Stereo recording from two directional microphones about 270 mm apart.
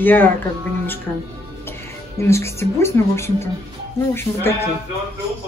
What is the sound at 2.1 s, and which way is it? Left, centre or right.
Speech, centre.